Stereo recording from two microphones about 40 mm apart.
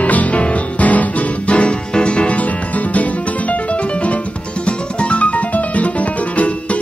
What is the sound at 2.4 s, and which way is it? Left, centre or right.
Music, left.